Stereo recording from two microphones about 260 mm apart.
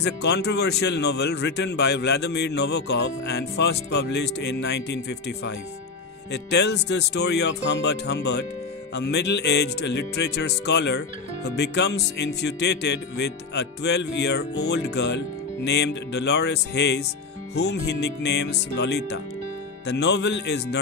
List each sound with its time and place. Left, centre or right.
0.0 s speech: left